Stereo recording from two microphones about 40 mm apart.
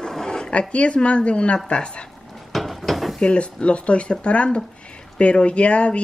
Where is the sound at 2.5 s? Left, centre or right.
Centre.